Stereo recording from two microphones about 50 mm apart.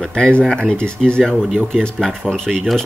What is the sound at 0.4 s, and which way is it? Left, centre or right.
Speech, centre.